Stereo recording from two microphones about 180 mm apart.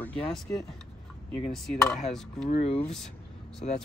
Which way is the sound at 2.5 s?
40° left (ahead or behind).